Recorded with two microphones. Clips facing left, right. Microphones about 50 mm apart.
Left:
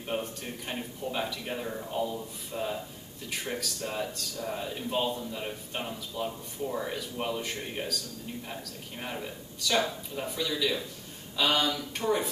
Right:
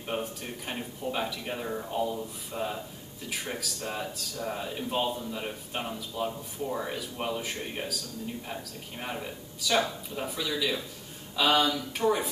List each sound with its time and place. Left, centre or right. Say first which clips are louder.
0.0 s speech: even; centre